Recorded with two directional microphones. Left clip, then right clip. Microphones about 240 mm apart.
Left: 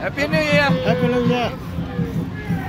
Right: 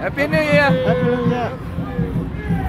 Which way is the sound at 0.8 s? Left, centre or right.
Left.